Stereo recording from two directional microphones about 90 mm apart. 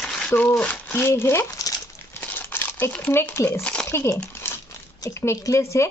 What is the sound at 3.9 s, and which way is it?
Speech, 30° left (ahead or behind).